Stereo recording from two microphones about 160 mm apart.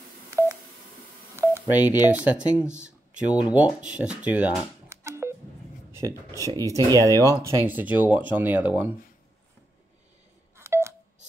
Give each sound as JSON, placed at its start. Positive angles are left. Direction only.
{"t": 0.4, "sound": "telephone dialing", "side_deg": -15}
{"t": 1.3, "sound": "speech", "side_deg": -15}
{"t": 5.9, "sound": "a sound", "side_deg": -15}
{"t": 6.4, "sound": "speech", "side_deg": -20}
{"t": 10.6, "sound": "telephone dialing", "side_deg": -15}